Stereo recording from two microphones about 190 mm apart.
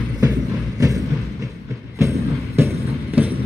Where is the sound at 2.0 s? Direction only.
15° right (ahead or behind).